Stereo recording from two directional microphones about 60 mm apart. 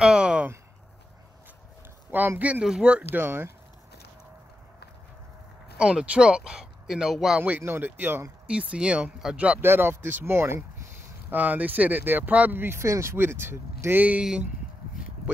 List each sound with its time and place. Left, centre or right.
0.0 s a sound: centre
2.0 s a man's voice: right
2.6 s speech: centre
3.0 s speech: right
5.8 s speech: centre
7.3 s speech: right
7.6 s speech: right
8.5 s speech: centre
9.6 s speech: right
11.2 s speech: right
12.8 s speech: right
13.1 s speech: right